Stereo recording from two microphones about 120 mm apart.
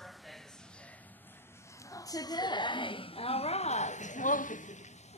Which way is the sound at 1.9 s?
30° left (ahead or behind).